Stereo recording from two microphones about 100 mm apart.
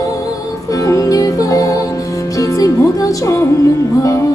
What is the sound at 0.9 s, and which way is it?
Music, 35° left (ahead or behind).